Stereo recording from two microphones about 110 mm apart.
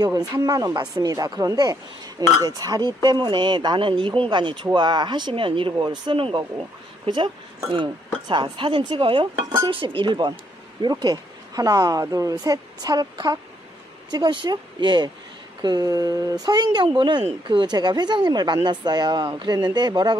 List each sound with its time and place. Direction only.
0.3 s speech: 35° right (ahead or behind); by 7.2 s 55° right (ahead or behind)
8.3 s speech: 50° right (ahead or behind)